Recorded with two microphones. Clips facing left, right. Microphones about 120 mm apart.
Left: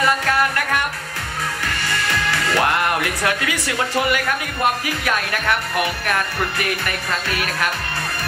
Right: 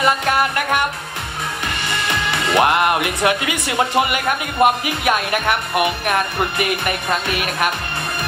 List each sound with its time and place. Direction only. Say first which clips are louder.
0.0 s music: right 1 dB; 20° right (ahead or behind)
1.7 s speech: right 1 dB; 20° right (ahead or behind)